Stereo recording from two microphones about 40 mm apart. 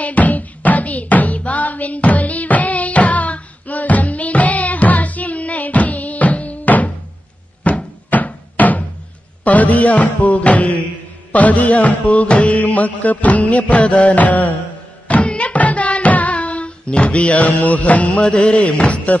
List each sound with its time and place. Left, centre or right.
0.0 s music: left
7.6 s cupboard open or close: left
9.4 s music: left
18.2 s music: left